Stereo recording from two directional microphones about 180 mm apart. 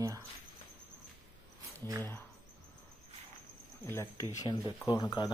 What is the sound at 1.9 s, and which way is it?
Speech, 20° right (ahead or behind).